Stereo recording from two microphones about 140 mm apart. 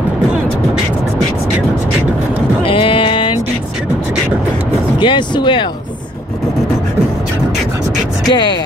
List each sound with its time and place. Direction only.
2.6 s music: 40° left (ahead or behind)
5.0 s speech: 35° left (ahead or behind)
8.3 s speech: 30° left (ahead or behind)